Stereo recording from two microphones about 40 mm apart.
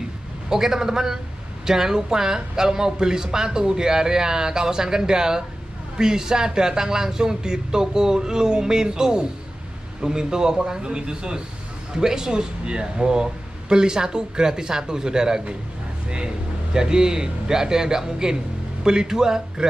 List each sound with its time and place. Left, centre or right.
0.5 s speech: centre
16.7 s speech: centre